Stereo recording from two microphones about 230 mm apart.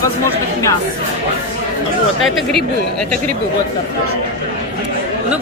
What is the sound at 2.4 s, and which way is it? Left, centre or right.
Speech, centre.